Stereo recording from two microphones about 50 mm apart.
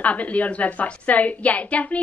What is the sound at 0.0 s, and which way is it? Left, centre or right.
A woman's voice, left.